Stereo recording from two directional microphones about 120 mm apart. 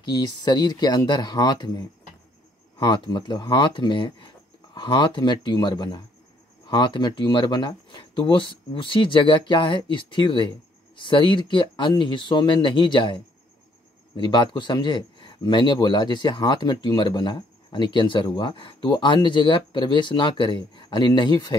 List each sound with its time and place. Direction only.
0.1 s speech: 35° left (ahead or behind)